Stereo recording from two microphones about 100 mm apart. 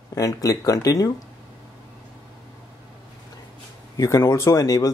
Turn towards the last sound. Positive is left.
turn(degrees=35)  # may be behind; listen again after turning